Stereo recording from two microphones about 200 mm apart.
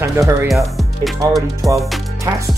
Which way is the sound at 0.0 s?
15° right (ahead or behind).